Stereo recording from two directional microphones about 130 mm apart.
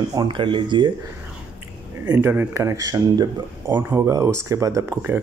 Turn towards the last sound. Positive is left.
turn(degrees=-20)  # may be behind; listen again after turning